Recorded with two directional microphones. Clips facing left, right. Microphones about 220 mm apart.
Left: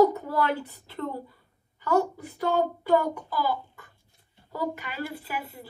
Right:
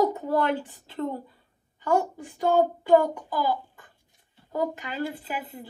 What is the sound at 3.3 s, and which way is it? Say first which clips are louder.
A child's voice: right 2 dB; 20° right (ahead or behind).